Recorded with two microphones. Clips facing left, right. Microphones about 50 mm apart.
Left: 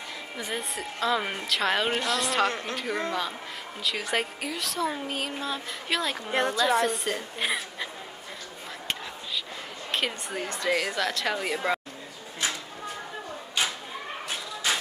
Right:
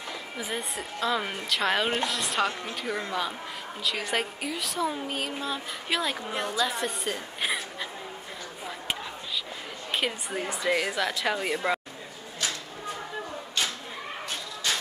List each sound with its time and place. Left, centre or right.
0.4 s a woman's voice: centre
9.8 s a woman's voice: centre
14.7 s a sound: centre